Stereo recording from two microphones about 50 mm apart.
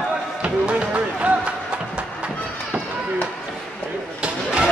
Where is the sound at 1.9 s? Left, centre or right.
Right.